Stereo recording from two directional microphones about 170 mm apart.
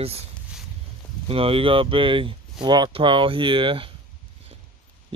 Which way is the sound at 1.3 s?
35° right (ahead or behind).